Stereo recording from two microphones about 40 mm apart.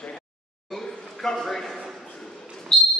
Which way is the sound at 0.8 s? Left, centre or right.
Centre.